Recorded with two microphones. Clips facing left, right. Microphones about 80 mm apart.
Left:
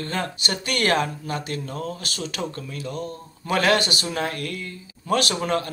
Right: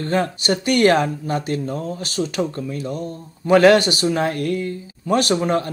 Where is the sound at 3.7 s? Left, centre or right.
Left.